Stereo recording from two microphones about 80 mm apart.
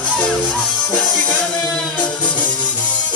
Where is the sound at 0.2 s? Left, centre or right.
Centre.